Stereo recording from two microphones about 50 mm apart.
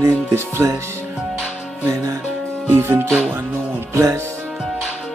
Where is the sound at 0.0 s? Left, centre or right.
Right.